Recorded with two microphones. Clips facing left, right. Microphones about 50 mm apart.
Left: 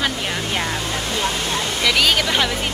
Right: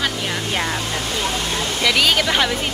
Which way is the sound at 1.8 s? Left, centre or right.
Centre.